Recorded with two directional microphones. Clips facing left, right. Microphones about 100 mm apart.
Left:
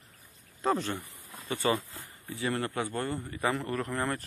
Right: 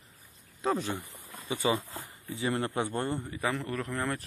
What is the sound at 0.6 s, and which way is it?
Speech, centre (ahead or behind).